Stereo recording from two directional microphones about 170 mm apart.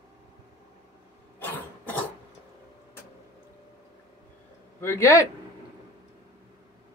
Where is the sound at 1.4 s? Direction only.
10° left (ahead or behind).